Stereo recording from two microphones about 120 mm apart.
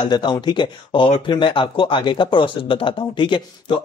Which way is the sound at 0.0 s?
40° left (ahead or behind).